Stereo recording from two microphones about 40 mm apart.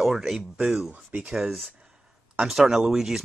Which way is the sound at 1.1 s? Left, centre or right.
Right.